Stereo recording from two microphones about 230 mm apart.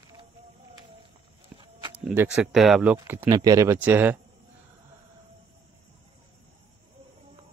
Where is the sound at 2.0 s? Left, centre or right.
Centre.